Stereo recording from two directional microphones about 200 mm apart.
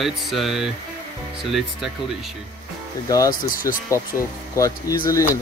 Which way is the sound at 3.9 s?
15° left (ahead or behind).